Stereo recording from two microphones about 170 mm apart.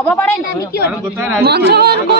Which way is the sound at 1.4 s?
70° right (ahead or behind).